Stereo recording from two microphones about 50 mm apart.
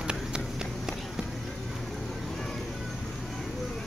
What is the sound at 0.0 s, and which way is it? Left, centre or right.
Run, centre.